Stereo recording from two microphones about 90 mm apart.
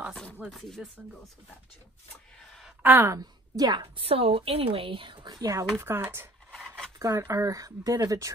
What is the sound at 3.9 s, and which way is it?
A woman's voice, 90° right.